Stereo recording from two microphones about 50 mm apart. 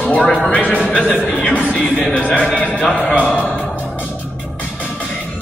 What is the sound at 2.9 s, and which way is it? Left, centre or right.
Speech, centre.